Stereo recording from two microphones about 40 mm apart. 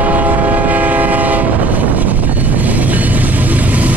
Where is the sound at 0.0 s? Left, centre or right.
Right.